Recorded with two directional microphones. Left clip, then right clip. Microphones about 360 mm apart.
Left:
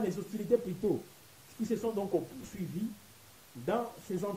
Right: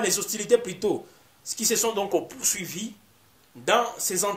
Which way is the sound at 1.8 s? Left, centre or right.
Right.